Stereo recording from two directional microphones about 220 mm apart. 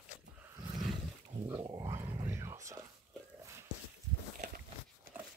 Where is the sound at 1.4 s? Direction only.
10° right (ahead or behind).